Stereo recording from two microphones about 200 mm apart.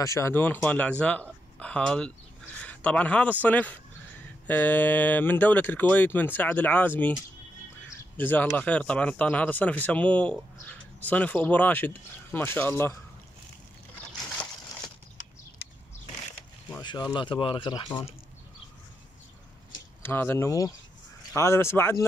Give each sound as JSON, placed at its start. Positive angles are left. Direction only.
{"t": 0.0, "sound": "speech", "side_deg": 15}
{"t": 8.2, "sound": "speech", "side_deg": 10}
{"t": 16.8, "sound": "speech", "side_deg": 20}
{"t": 20.0, "sound": "speech", "side_deg": 10}